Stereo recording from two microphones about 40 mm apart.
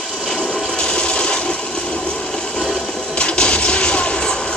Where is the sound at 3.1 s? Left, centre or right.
Left.